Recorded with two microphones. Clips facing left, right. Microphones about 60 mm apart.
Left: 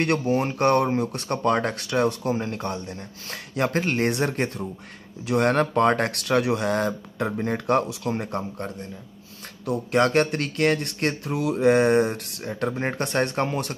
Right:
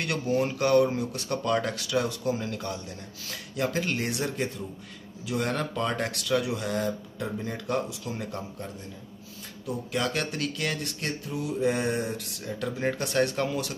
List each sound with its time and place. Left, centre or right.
0.0 s speech: left
11.3 s speech: left